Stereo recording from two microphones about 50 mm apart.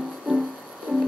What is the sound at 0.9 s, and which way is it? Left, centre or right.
Music, centre.